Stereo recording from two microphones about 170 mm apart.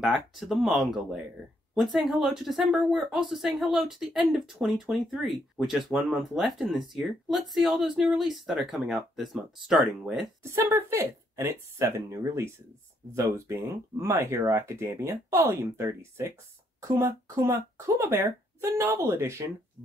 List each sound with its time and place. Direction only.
0.0 s speech: centre (ahead or behind)
10.4 s speech: 15° right (ahead or behind)